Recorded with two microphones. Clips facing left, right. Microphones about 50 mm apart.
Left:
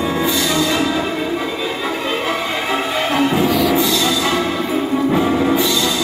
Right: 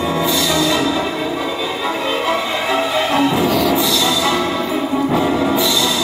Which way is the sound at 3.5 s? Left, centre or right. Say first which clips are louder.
Even; centre.